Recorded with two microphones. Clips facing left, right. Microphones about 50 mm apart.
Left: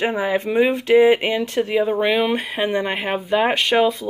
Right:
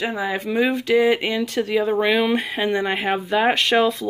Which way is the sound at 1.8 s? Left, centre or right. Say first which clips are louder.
Even; centre.